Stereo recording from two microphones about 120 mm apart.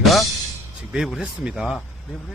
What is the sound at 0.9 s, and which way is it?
Speech, 5° right (ahead or behind).